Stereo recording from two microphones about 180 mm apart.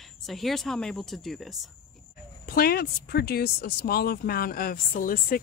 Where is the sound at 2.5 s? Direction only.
55° left (ahead or behind).